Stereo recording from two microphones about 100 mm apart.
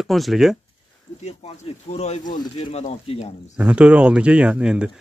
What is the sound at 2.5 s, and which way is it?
Speech, 90° left.